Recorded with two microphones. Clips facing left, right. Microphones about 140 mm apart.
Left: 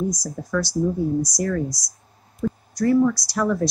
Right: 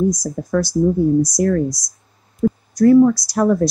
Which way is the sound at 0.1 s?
50° right (ahead or behind).